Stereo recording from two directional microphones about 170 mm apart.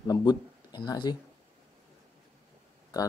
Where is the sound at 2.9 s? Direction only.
25° left (ahead or behind).